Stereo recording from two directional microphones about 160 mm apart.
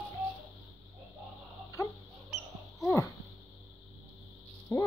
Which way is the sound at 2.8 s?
20° left (ahead or behind).